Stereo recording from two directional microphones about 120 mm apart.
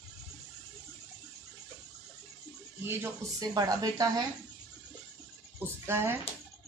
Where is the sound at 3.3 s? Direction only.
30° right (ahead or behind).